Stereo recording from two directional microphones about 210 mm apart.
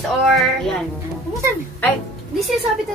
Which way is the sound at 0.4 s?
Centre (ahead or behind).